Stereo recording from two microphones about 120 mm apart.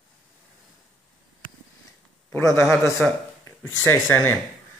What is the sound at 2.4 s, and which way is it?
Speech, 25° left (ahead or behind).